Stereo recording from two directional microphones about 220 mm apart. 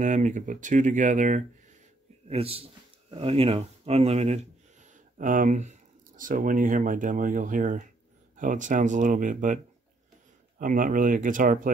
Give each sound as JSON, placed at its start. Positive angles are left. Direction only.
{"t": 0.0, "sound": "speech", "side_deg": -35}
{"t": 10.6, "sound": "speech", "side_deg": -35}